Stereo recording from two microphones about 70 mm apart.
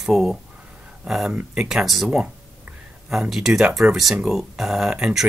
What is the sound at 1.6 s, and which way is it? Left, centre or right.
Speech, centre.